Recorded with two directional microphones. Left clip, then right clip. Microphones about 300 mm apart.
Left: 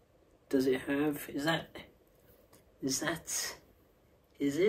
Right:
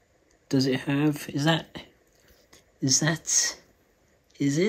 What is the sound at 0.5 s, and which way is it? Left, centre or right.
Speech, right.